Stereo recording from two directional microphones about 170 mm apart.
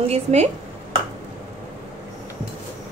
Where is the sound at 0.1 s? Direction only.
40° right (ahead or behind).